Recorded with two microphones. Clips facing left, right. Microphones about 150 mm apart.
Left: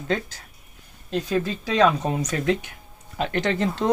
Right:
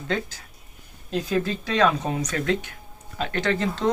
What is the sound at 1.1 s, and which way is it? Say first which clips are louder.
Speech: even; centre (ahead or behind).